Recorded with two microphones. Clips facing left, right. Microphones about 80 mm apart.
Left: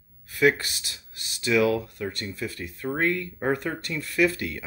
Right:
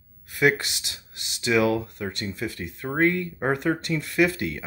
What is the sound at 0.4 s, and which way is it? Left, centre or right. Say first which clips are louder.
Speech: even; centre.